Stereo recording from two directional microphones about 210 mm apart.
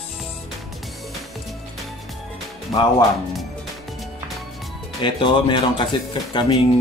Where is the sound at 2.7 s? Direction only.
20° left (ahead or behind).